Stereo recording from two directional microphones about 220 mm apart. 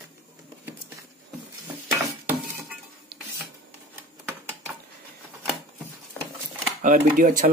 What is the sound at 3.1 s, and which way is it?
Printer, 45° right (ahead or behind).